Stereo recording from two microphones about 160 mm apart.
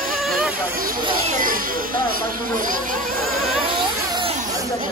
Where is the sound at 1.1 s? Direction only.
60° right (ahead or behind).